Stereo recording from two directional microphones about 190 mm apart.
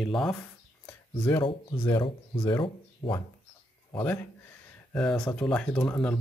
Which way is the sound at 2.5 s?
20° left (ahead or behind).